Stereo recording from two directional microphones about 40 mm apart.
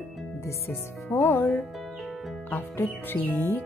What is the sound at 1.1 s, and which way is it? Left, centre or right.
Speech, left.